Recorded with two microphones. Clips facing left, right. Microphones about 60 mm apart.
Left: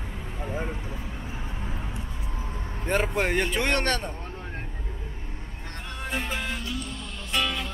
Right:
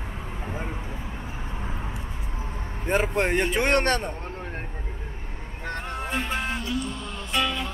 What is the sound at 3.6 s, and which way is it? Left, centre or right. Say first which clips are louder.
Speech: right 3 dB; right.